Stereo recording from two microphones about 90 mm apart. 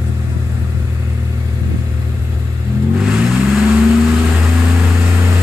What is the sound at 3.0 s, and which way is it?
Vehicle, 10° right (ahead or behind).